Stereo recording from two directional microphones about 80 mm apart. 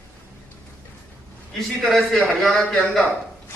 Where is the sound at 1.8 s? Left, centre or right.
Centre.